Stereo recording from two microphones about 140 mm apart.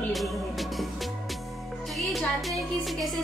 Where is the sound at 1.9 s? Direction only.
Centre (ahead or behind).